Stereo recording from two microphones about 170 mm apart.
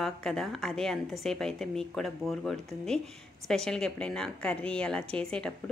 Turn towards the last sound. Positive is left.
turn(degrees=5)  # may be behind; listen again after turning